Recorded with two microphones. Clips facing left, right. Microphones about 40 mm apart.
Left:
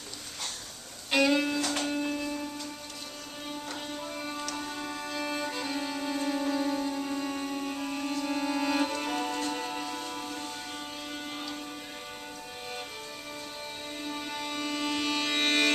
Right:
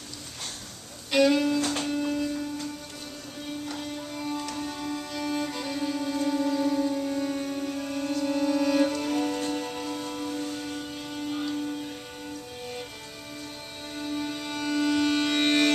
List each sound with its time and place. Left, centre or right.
1.1 s music: centre
1.9 s a sound: centre
3.6 s music: centre
10.7 s music: centre
13.9 s music: centre